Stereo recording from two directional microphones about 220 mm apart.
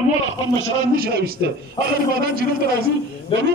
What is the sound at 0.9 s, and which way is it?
A man's voice, 45° right (ahead or behind).